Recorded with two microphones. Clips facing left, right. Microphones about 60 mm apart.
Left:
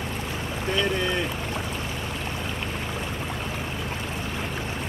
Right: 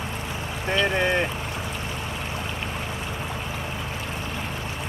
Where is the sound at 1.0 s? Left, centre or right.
Right.